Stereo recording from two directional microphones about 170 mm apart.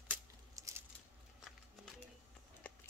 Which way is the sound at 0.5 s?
20° right (ahead or behind).